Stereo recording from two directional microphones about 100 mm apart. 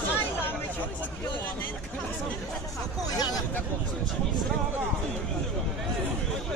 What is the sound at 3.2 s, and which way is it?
Speech, 40° left (ahead or behind).